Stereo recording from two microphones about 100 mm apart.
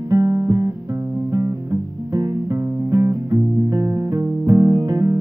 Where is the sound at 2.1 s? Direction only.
40° right (ahead or behind).